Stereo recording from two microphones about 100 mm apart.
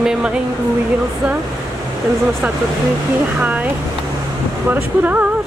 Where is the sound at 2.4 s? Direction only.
10° right (ahead or behind).